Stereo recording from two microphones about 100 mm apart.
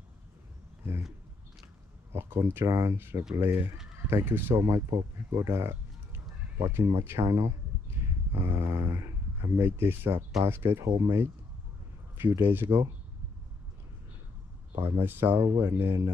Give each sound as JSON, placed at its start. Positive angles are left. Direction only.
{"t": 2.1, "sound": "speech", "side_deg": -25}
{"t": 3.5, "sound": "speech", "side_deg": -5}
{"t": 4.1, "sound": "speech", "side_deg": -25}
{"t": 14.9, "sound": "speech", "side_deg": -25}